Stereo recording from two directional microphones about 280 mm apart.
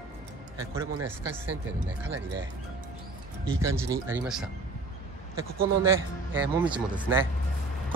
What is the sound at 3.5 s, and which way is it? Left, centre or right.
Speech, centre.